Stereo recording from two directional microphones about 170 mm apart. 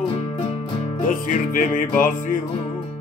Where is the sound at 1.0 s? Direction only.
50° left (ahead or behind).